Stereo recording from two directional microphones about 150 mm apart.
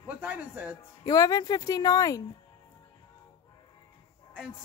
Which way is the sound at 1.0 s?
25° left (ahead or behind).